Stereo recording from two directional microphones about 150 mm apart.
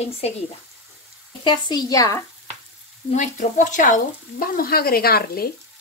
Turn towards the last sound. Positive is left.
turn(degrees=90)